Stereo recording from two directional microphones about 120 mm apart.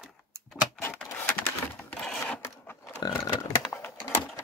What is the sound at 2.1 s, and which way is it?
Sewing machine, 10° left (ahead or behind).